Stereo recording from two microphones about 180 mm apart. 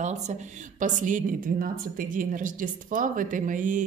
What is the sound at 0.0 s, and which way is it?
A woman's voice, 40° right (ahead or behind).